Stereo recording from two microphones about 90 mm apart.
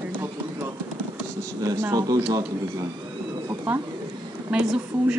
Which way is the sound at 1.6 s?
40° right (ahead or behind).